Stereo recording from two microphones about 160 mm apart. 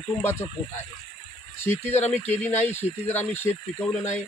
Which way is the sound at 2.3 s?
10° left (ahead or behind).